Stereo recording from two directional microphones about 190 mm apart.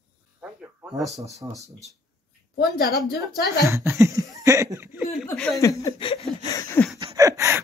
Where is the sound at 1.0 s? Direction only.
15° right (ahead or behind).